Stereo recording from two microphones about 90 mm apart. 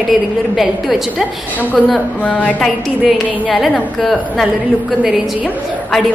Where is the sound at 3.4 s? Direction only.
Centre (ahead or behind).